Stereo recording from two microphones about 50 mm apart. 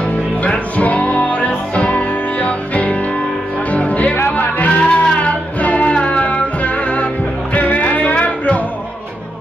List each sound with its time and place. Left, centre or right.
0.4 s music: left